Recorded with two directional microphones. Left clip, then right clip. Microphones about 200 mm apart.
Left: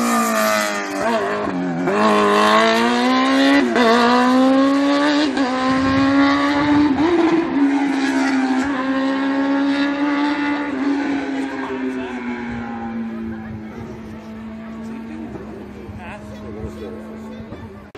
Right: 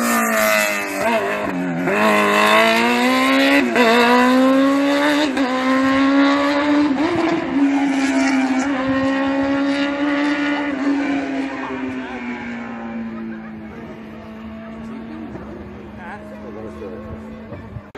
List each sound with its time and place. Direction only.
0.0 s vehicle: 20° right (ahead or behind); by 10.9 s 50° right (ahead or behind)